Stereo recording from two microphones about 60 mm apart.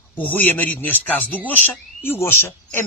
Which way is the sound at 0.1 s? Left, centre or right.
Left.